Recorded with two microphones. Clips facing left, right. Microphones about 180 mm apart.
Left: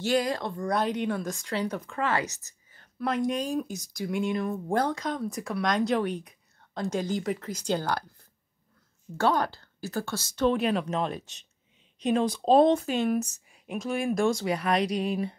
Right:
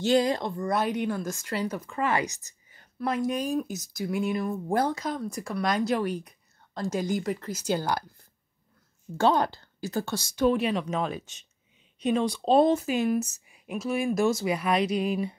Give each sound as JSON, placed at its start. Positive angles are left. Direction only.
{"t": 0.0, "sound": "speech", "side_deg": -25}
{"t": 0.6, "sound": "speech", "side_deg": -5}
{"t": 2.0, "sound": "a woman's voice", "side_deg": -15}
{"t": 3.0, "sound": "speech", "side_deg": -5}
{"t": 9.2, "sound": "speech", "side_deg": -20}